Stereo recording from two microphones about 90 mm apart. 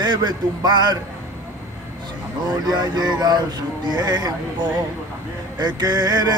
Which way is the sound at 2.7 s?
50° right (ahead or behind).